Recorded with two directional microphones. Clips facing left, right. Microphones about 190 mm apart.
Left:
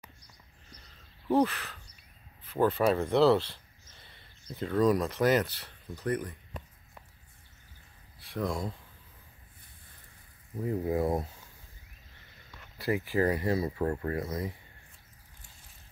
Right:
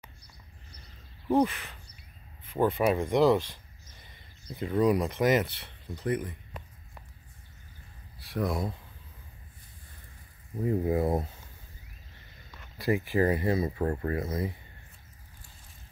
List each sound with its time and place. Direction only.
1.3 s speech: 10° right (ahead or behind)
8.3 s speech: 5° right (ahead or behind)
10.6 s speech: 15° right (ahead or behind)
13.0 s speech: 20° right (ahead or behind)